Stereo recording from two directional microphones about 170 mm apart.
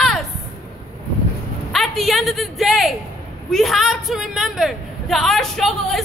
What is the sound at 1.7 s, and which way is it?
A man's voice, centre (ahead or behind).